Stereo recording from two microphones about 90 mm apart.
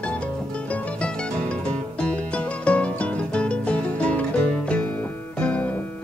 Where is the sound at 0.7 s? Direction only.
15° left (ahead or behind).